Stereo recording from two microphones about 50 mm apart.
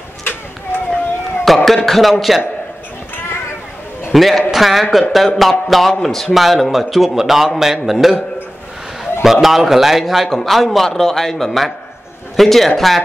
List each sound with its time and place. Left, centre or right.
0.2 s a sound: left
1.4 s a man's voice: centre
4.1 s a man's voice: centre
9.2 s a man's voice: centre